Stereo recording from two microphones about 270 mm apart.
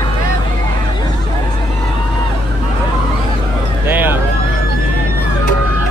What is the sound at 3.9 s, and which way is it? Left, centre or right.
Vehicle, centre.